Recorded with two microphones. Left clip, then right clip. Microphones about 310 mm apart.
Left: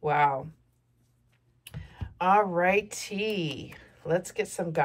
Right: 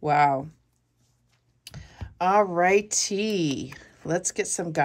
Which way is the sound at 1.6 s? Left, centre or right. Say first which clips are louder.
Right 2 dB; right.